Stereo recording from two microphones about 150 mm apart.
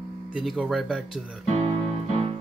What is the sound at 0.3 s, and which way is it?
Speech, 5° right (ahead or behind).